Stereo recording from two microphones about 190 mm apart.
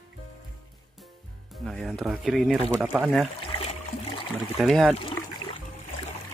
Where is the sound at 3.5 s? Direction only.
30° left (ahead or behind).